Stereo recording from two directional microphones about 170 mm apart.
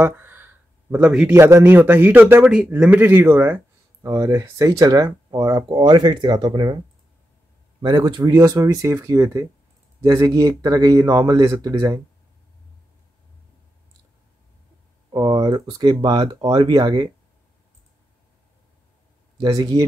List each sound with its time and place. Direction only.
0.0 s a man's voice: 15° right (ahead or behind)
7.8 s speech: 25° right (ahead or behind)
15.0 s speech: 25° right (ahead or behind)
19.4 s speech: 20° right (ahead or behind)